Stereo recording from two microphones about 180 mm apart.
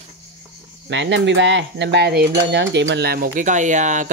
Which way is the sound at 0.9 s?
80° right.